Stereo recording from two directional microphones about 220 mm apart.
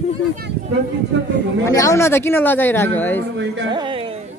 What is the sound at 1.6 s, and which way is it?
Speech, 15° left (ahead or behind).